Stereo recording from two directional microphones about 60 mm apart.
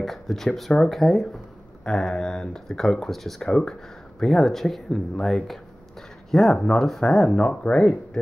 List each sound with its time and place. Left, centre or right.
0.0 s speech: centre